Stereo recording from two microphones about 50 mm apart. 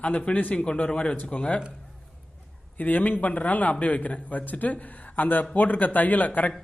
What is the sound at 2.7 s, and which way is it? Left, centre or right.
A man's voice, left.